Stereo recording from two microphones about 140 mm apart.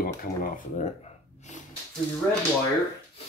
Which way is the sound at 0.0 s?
90° left.